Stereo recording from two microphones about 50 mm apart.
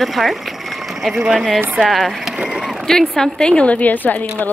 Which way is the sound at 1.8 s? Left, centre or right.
Centre.